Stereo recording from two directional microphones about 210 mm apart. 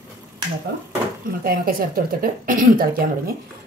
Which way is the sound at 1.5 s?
45° right (ahead or behind).